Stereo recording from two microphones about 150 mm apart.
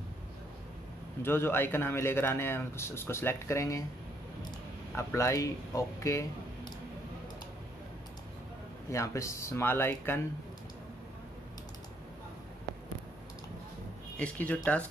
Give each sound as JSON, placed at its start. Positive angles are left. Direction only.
{"t": 1.2, "sound": "speech", "side_deg": 15}
{"t": 4.9, "sound": "speech", "side_deg": 20}
{"t": 8.9, "sound": "speech", "side_deg": 20}
{"t": 14.1, "sound": "speech", "side_deg": 10}